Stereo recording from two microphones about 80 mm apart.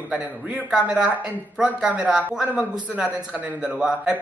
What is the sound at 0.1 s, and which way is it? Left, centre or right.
A woman's voice, centre.